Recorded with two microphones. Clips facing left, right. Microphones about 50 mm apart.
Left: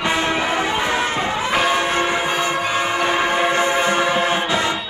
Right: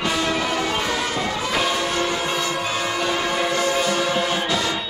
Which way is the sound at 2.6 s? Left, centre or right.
Left.